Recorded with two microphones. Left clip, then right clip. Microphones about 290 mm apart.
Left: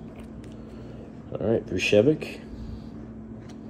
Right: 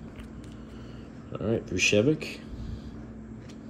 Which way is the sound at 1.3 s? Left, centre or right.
Centre.